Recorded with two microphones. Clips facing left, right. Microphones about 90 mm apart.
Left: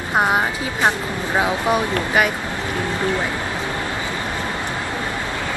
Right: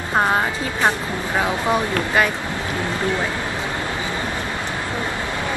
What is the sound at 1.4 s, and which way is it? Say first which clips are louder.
Speech: left 1 dB; 15° left (ahead or behind).